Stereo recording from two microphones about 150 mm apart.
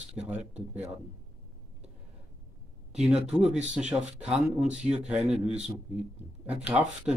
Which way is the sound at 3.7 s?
5° right (ahead or behind).